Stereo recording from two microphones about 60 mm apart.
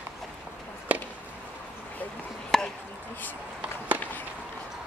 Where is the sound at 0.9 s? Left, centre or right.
Right.